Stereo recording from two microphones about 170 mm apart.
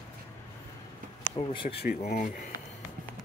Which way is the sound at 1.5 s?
30° left (ahead or behind).